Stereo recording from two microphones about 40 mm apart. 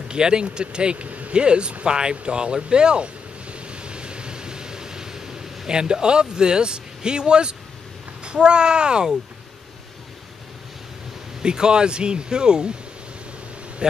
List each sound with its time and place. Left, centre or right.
0.1 s speech: right
1.4 s a sound: right
8.2 s speech: right
11.4 s speech: right